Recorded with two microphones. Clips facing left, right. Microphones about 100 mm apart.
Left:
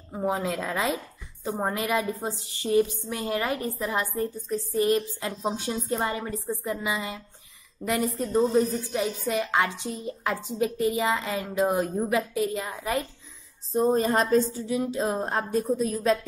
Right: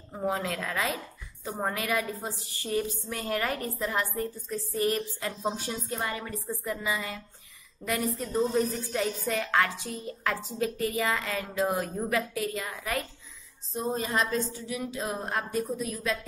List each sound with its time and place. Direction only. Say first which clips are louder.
0.1 s a woman's voice: left 3 dB; 20° left (ahead or behind)
6.5 s a woman's voice: left 2 dB; 20° left (ahead or behind)
13.7 s a woman's voice: left 7 dB; 45° left (ahead or behind)